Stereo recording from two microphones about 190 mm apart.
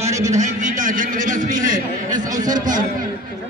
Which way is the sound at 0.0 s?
40° right (ahead or behind).